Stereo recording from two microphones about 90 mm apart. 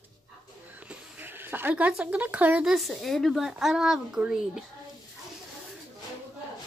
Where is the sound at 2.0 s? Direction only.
15° right (ahead or behind).